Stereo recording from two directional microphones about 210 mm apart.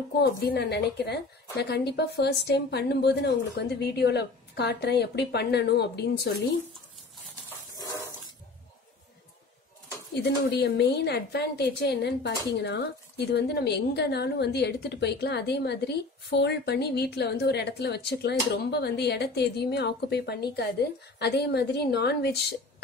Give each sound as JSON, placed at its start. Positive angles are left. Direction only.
{"t": 0.2, "sound": "a woman's voice", "side_deg": 50}
{"t": 7.4, "sound": "a sound", "side_deg": 15}
{"t": 10.1, "sound": "a woman's voice", "side_deg": 50}